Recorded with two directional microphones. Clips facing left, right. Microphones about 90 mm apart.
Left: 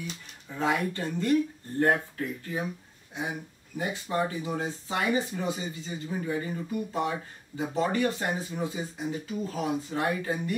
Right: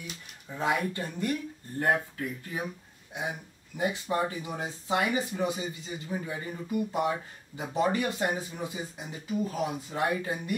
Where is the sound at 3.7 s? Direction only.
20° right (ahead or behind).